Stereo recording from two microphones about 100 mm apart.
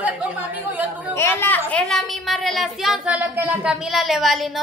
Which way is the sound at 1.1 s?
25° left (ahead or behind).